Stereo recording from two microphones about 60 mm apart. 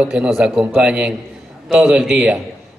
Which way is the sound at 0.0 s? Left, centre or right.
Centre.